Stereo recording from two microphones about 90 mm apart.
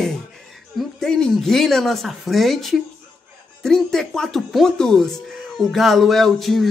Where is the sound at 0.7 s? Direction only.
5° left (ahead or behind).